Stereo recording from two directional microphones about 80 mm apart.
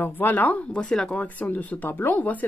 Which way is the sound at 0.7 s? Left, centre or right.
Centre.